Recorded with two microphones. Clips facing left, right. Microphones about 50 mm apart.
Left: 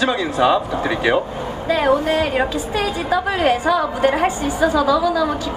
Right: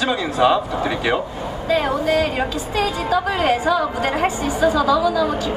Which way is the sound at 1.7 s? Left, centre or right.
Centre.